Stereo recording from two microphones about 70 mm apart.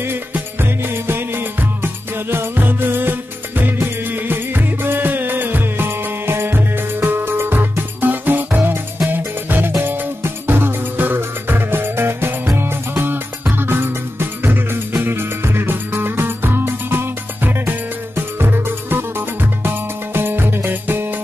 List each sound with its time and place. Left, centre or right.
0.0 s music: right